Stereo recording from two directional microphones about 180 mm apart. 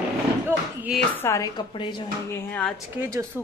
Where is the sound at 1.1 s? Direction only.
15° left (ahead or behind).